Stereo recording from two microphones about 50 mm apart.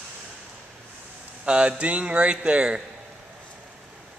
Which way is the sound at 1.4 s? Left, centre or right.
Right.